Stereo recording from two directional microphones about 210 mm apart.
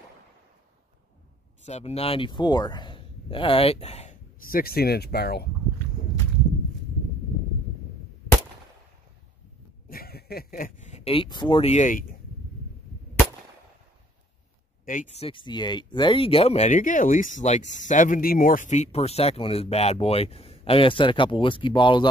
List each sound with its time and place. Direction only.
1.7 s speech: 30° left (ahead or behind); by 5.5 s 50° left (ahead or behind)
9.8 s speech: 45° left (ahead or behind)
14.9 s speech: 35° left (ahead or behind)